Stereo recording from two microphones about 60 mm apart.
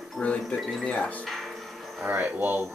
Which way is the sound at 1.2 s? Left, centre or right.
Centre.